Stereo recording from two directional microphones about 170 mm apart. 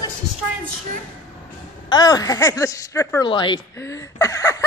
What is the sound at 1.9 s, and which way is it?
Speech, 25° left (ahead or behind).